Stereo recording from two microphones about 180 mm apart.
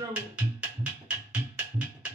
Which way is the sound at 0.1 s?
5° right (ahead or behind).